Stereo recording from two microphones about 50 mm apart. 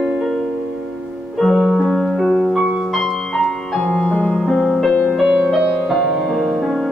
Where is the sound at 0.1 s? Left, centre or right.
Centre.